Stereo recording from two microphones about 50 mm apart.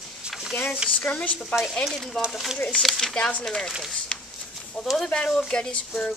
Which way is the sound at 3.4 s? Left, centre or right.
Centre.